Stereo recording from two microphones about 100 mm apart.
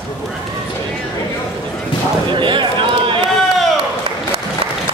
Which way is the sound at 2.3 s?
55° right (ahead or behind).